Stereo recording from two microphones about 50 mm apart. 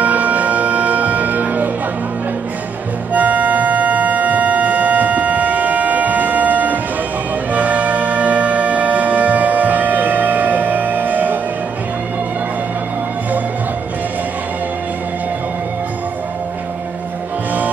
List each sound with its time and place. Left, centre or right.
0.0 s music: right
3.1 s music: right